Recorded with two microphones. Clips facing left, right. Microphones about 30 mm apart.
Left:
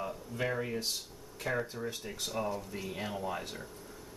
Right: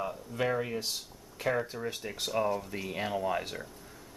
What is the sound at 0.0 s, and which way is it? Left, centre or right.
Speech, centre.